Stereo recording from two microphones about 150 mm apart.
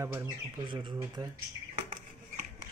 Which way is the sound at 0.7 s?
35° right (ahead or behind).